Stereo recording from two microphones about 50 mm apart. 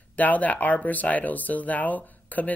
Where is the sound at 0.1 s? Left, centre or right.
Left.